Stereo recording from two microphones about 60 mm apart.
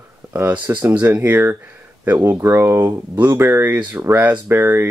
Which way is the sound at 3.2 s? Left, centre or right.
Right.